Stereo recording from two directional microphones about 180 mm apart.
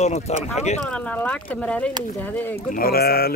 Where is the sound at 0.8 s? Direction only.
5° left (ahead or behind).